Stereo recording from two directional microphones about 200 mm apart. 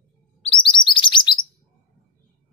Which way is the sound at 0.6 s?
25° left (ahead or behind).